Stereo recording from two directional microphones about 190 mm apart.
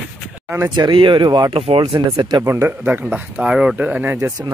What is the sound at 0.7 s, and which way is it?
Speech, 25° right (ahead or behind).